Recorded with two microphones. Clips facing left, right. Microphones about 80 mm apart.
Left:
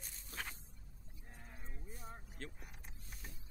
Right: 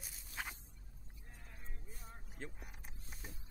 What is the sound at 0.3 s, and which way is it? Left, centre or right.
Scrape, left.